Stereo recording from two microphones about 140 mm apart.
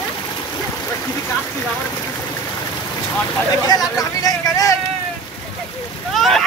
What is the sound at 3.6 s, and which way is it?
Speech, 25° left (ahead or behind).